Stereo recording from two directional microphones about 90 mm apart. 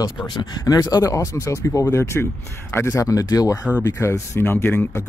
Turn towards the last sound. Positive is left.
turn(degrees=25)  # may be behind; listen again after turning